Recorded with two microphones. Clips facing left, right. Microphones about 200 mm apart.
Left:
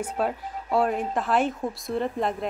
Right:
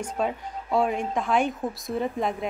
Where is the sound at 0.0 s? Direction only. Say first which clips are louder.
Left 1 dB; 5° left (ahead or behind).